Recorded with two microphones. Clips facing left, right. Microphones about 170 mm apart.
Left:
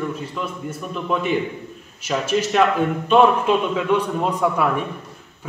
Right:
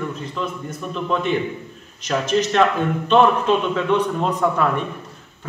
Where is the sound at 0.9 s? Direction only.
5° left (ahead or behind).